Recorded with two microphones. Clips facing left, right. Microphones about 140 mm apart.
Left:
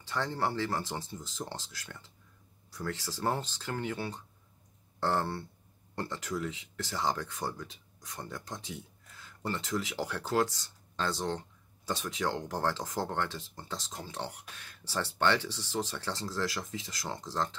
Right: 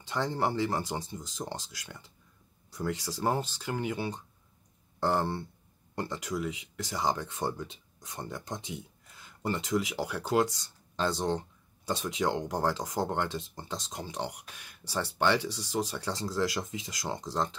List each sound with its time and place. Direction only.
0.0 s speech: 20° right (ahead or behind)